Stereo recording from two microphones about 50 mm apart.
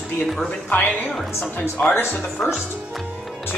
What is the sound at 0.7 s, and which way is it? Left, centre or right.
Speech, left.